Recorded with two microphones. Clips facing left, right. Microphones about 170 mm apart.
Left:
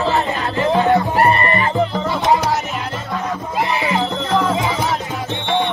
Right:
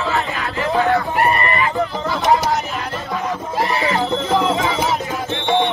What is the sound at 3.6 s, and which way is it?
Music, 20° left (ahead or behind).